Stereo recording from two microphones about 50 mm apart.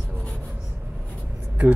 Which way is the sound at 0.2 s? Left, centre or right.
Left.